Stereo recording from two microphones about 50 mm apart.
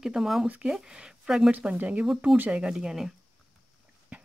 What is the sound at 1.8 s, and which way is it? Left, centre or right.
Speech, right.